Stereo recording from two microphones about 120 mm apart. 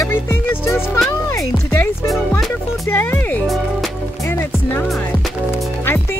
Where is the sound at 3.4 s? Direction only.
Centre (ahead or behind).